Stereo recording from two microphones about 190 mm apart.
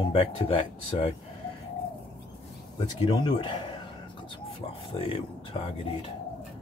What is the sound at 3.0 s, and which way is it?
Speech, 25° left (ahead or behind).